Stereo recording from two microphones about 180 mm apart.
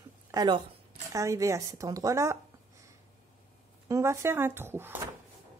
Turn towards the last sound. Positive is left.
turn(degrees=-10)  # may be behind; listen again after turning